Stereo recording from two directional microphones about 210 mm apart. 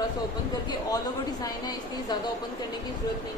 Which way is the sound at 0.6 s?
20° left (ahead or behind).